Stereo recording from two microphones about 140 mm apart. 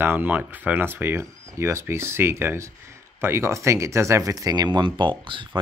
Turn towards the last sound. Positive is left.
turn(degrees=-35)  # may be behind; listen again after turning